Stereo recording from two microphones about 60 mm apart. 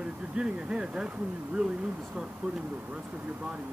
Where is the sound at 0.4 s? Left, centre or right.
Centre.